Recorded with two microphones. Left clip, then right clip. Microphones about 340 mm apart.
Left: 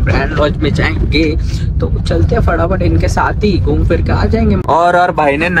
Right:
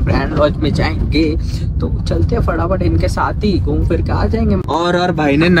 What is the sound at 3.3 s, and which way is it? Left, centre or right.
Speech, left.